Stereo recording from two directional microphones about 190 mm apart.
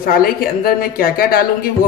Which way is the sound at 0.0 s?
50° left (ahead or behind).